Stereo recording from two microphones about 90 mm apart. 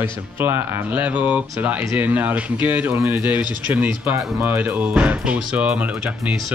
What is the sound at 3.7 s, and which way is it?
Speech, 20° right (ahead or behind).